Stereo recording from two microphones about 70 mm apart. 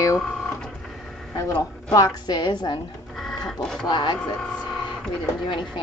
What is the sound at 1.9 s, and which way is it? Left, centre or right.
Speech, left.